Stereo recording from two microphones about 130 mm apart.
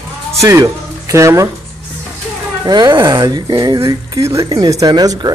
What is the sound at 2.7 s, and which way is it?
Speech, 35° right (ahead or behind).